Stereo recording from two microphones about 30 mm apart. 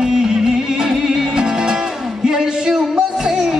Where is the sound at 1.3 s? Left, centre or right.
Right.